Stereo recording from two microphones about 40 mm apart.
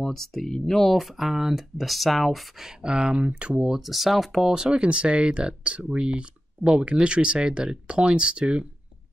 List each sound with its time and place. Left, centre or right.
0.0 s speech: centre
0.9 s speech: centre
2.6 s speech: right
3.7 s speech: centre
4.5 s speech: right